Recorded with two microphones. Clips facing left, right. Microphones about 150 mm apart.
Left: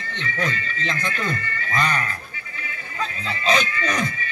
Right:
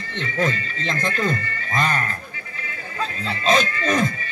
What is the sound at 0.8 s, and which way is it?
A man's voice, 40° right (ahead or behind).